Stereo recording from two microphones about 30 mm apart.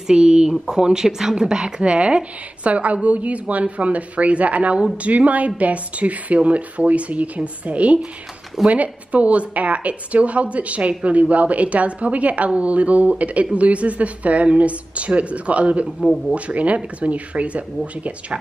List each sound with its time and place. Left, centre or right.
0.0 s speech: right